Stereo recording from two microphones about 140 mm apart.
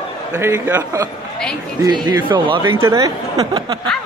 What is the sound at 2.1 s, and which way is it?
Speech, 30° right (ahead or behind).